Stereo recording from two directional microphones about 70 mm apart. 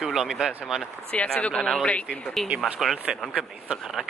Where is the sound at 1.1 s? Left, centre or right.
Centre.